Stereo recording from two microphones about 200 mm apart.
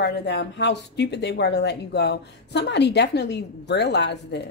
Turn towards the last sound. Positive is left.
turn(degrees=60)  # may be behind; listen again after turning